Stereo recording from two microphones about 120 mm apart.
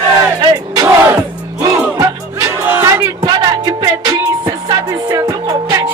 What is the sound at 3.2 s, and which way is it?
Music, 35° right (ahead or behind).